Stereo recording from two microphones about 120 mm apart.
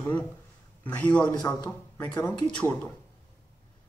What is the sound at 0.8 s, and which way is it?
Speech, 15° left (ahead or behind).